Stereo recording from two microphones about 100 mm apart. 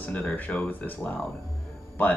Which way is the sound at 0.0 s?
15° left (ahead or behind).